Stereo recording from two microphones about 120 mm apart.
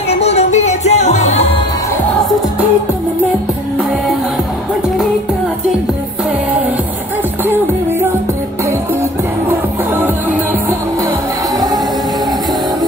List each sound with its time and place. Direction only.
0.1 s music: 60° left (ahead or behind)
7.4 s music: 20° right (ahead or behind)